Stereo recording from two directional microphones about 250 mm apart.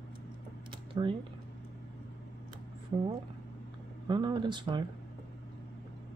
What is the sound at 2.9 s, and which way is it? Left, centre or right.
Speech, centre.